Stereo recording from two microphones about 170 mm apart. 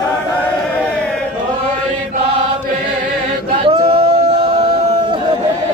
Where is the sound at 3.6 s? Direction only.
30° right (ahead or behind).